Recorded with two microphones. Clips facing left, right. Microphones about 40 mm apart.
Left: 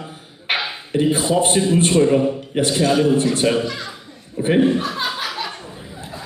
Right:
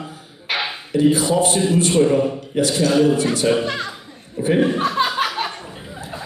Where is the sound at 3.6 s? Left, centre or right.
Right.